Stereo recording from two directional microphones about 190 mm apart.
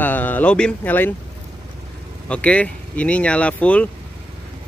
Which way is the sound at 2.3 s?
5° left (ahead or behind).